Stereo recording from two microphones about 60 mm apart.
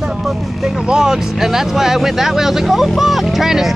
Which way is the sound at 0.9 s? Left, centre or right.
Centre.